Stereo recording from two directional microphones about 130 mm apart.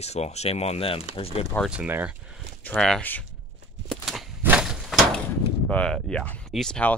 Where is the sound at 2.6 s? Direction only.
5° left (ahead or behind).